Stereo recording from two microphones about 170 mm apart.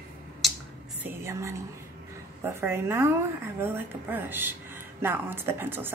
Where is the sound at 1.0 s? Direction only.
15° right (ahead or behind).